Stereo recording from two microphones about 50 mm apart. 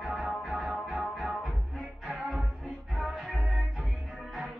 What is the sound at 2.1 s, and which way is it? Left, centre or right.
Music, right.